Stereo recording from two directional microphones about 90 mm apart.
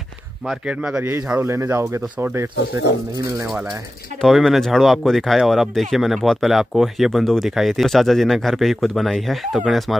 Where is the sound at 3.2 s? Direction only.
35° right (ahead or behind).